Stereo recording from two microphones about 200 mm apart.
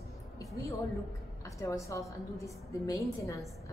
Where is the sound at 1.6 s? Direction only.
15° left (ahead or behind).